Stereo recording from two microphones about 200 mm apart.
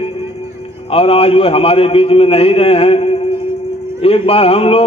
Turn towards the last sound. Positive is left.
turn(degrees=30)  # may be behind; listen again after turning